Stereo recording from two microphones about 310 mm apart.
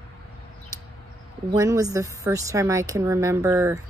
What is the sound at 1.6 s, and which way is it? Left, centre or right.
Speech, centre.